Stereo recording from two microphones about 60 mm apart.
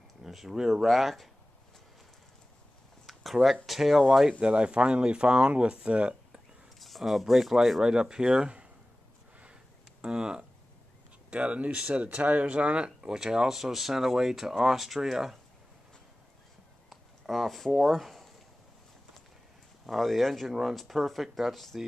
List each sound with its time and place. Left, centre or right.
0.2 s speech: centre
3.1 s a sound: centre
3.6 s speech: centre
4.4 s speech: centre
6.8 s speech: centre
7.8 s speech: centre
10.0 s speech: centre
16.9 s a sound: centre
17.7 s speech: centre
19.9 s speech: centre